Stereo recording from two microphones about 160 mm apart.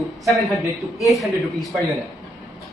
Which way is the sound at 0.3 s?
Centre (ahead or behind).